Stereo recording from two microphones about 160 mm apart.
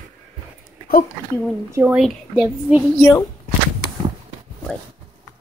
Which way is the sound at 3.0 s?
20° left (ahead or behind).